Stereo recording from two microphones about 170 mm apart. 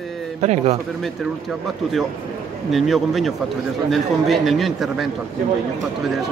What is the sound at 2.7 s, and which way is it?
A man's voice, centre (ahead or behind).